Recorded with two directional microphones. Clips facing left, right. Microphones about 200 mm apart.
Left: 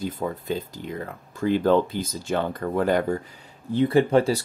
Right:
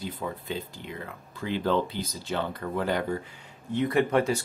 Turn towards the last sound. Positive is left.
turn(degrees=30)  # may be behind; listen again after turning